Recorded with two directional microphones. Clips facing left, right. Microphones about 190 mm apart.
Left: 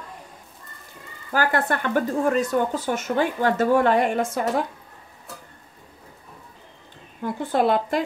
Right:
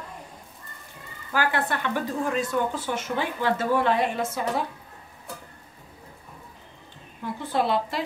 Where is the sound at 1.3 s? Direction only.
45° left (ahead or behind).